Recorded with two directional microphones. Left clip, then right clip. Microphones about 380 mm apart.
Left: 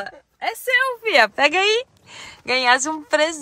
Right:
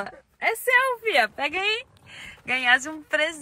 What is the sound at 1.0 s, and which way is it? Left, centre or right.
Speech, left.